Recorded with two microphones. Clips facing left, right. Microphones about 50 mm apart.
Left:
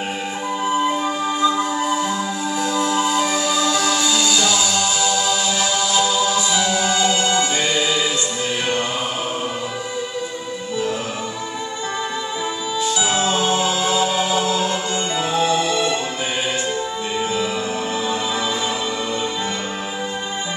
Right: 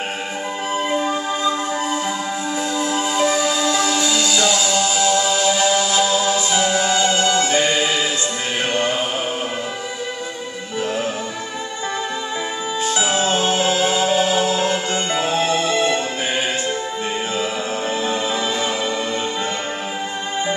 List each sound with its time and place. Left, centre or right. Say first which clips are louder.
1.8 s music: left 2 dB; centre
6.6 s music: right 1 dB; right
7.1 s music: right 1 dB; centre
7.5 s music: right 2 dB; right
13.0 s music: right 1 dB; right